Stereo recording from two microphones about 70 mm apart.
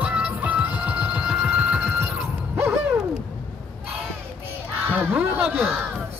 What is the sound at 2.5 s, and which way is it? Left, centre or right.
Owl, right.